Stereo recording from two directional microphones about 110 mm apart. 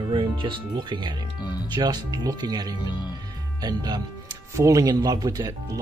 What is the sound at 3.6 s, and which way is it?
Speech, 40° right (ahead or behind).